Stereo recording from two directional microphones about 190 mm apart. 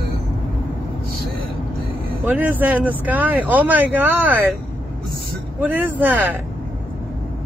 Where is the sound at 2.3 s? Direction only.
10° right (ahead or behind).